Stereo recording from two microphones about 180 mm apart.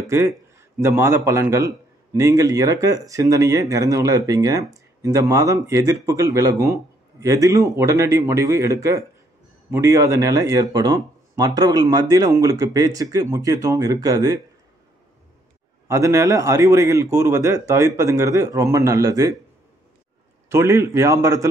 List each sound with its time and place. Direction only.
0.0 s a man's voice: 15° right (ahead or behind)
15.9 s speech: 15° right (ahead or behind)
20.4 s speech: 15° right (ahead or behind)